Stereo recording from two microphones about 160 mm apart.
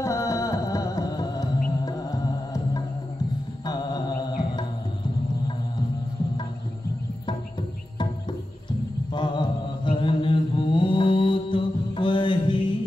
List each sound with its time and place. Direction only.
0.0 s music: 20° left (ahead or behind)
9.1 s mantra: 30° left (ahead or behind)